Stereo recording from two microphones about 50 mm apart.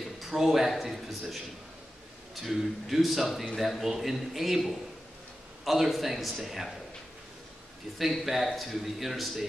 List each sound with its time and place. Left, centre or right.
0.2 s a man's voice: centre
2.4 s a man's voice: centre
8.1 s a man's voice: centre